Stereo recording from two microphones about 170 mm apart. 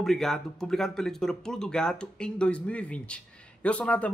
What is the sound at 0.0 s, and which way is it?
Speech, centre (ahead or behind).